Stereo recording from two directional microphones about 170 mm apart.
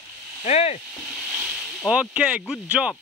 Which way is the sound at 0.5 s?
40° left (ahead or behind).